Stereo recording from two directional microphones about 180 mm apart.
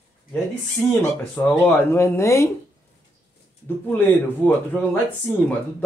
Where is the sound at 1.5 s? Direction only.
10° left (ahead or behind).